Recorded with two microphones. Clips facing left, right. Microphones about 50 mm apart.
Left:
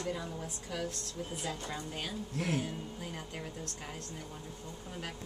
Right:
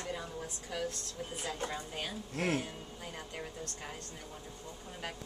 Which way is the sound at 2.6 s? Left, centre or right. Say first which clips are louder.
Left 3 dB; centre.